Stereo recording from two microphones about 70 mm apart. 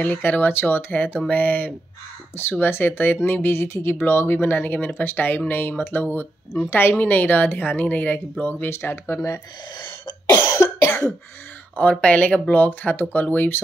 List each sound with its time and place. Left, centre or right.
0.0 s speech: left
0.9 s speech: centre
8.6 s speech: left
9.8 s cough: left
11.7 s speech: centre